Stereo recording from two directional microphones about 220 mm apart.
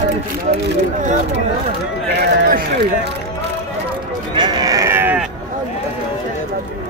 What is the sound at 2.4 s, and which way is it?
Speech, 45° right (ahead or behind).